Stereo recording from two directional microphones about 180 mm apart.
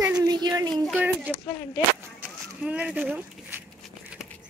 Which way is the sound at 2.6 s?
5° right (ahead or behind).